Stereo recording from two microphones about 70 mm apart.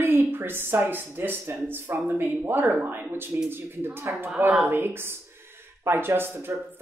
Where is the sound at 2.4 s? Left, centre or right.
Right.